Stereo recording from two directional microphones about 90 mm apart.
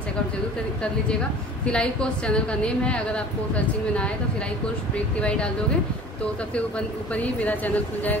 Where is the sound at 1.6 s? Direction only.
10° left (ahead or behind).